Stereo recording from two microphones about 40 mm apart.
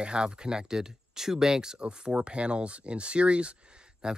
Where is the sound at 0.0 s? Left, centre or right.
Right.